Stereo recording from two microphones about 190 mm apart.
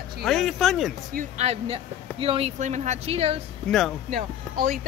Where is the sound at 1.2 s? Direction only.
35° right (ahead or behind).